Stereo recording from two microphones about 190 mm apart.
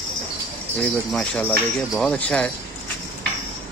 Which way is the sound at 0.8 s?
5° left (ahead or behind).